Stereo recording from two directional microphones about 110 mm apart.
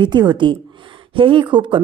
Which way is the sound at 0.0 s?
40° right (ahead or behind).